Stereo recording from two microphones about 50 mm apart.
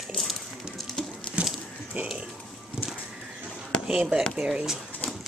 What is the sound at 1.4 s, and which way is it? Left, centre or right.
Dog, right.